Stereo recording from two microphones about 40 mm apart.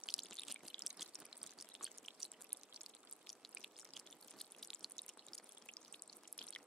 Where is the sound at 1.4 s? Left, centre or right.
Centre.